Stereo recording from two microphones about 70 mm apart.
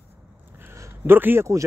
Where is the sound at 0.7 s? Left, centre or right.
Right.